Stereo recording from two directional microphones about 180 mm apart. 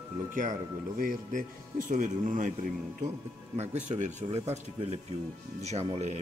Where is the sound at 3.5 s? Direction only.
40° right (ahead or behind).